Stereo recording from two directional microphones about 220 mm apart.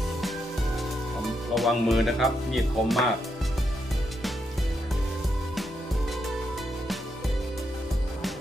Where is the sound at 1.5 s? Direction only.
Centre (ahead or behind).